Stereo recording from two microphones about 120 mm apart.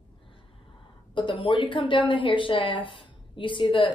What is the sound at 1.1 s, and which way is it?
A woman's voice, 45° left (ahead or behind).